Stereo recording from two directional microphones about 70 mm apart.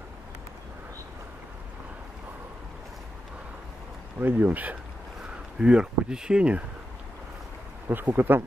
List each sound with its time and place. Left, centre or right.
4.2 s speech: right
5.6 s speech: centre
7.9 s speech: right